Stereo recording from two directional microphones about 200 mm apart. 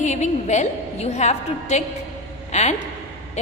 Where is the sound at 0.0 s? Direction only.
35° left (ahead or behind).